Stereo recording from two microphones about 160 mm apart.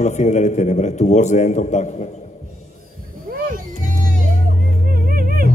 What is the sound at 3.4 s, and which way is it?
Music, 55° right (ahead or behind).